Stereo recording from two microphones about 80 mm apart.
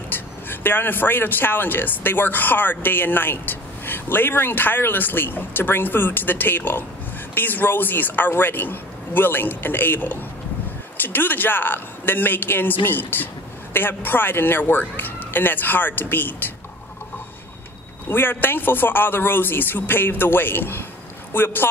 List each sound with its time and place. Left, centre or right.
0.1 s speech: left
18.0 s speech: left